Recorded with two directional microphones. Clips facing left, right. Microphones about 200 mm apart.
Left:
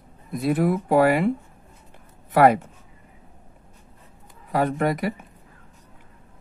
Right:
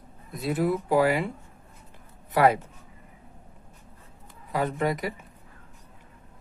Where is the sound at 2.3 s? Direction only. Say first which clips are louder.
Left 5 dB; 55° left (ahead or behind).